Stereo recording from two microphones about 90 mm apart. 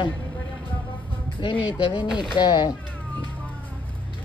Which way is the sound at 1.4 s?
65° left (ahead or behind).